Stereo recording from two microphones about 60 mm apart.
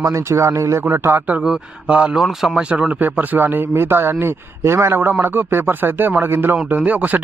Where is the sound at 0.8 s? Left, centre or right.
Right.